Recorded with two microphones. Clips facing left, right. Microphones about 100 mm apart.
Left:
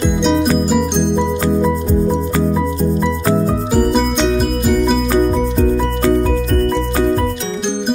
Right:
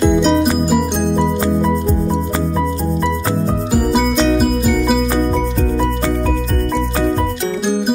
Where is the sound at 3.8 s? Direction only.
5° right (ahead or behind).